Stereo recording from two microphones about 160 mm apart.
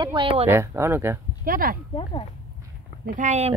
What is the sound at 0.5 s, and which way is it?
Speech, 15° right (ahead or behind).